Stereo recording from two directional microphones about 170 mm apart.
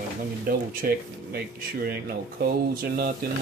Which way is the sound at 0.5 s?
60° right (ahead or behind).